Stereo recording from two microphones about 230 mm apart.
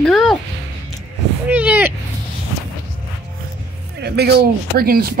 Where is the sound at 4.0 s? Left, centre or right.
Right.